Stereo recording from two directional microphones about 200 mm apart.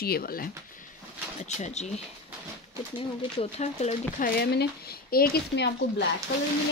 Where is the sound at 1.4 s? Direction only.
35° left (ahead or behind).